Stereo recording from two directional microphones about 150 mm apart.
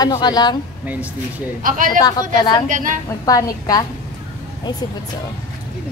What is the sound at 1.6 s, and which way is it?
A man's voice, 65° right (ahead or behind).